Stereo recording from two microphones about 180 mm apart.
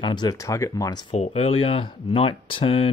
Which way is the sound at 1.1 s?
35° left (ahead or behind).